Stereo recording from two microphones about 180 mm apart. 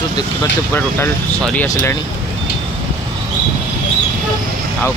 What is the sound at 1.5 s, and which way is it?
Speech, 15° left (ahead or behind).